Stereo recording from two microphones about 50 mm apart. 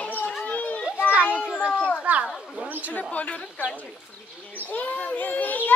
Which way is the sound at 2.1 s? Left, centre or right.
Right.